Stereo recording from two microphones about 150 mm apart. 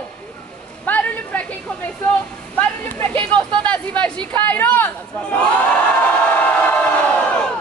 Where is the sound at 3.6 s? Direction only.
10° left (ahead or behind).